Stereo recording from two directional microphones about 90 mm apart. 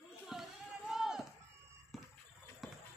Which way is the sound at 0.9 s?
5° right (ahead or behind).